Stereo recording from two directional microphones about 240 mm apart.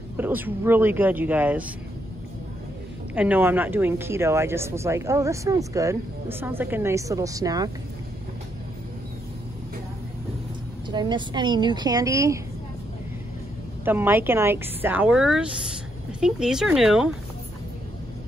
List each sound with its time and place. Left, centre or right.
0.2 s speech: centre
3.2 s speech: centre
10.9 s speech: centre
13.8 s speech: centre